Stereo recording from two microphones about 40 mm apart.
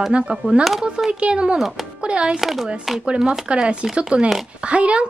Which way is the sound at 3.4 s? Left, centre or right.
Right.